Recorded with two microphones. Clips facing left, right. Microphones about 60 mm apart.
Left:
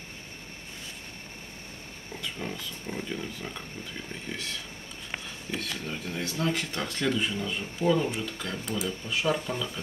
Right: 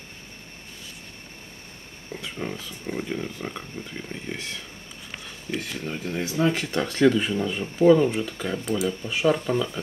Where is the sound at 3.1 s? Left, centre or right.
Right.